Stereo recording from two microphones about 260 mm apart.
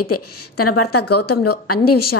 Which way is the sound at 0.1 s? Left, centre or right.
Left.